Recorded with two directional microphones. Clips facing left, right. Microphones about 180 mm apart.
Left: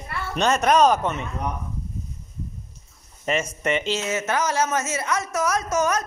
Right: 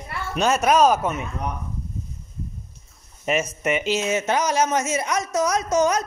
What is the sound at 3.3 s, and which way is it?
Speech, 10° right (ahead or behind).